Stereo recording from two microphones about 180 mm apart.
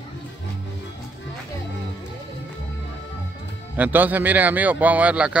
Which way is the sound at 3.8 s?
10° right (ahead or behind).